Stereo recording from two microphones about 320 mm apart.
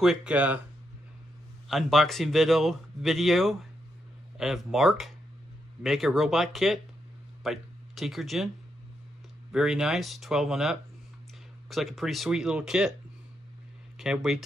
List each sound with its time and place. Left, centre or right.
0.0 s speech: centre
1.7 s speech: centre
9.5 s speech: centre
13.9 s speech: centre